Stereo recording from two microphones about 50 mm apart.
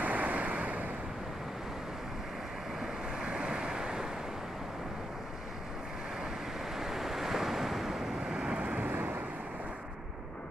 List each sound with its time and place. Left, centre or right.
0.0 s waves: right
2.8 s waves: centre
6.8 s waves: centre; by 8.9 s right
8.9 s waves: right